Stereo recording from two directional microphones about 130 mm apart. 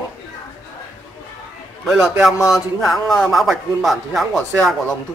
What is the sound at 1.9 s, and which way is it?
A man's voice, 5° right (ahead or behind).